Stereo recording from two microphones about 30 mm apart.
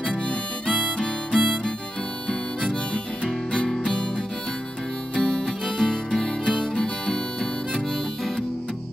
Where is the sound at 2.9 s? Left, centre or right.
Left.